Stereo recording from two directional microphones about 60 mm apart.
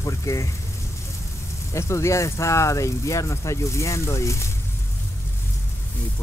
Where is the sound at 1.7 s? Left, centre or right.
Left.